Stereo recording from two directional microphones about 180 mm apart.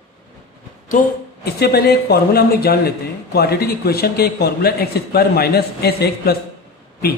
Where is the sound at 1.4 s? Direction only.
60° left (ahead or behind).